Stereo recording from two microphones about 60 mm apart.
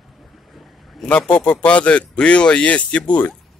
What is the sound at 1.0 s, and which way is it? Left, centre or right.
Speech, centre.